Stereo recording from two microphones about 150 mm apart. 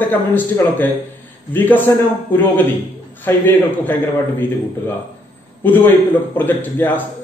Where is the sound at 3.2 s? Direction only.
15° left (ahead or behind).